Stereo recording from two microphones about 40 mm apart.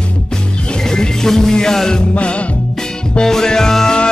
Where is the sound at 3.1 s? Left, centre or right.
Centre.